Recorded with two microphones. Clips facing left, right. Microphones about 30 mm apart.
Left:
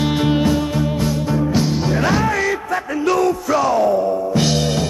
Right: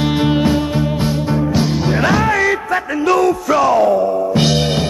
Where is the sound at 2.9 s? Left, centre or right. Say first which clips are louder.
Right 3 dB; centre.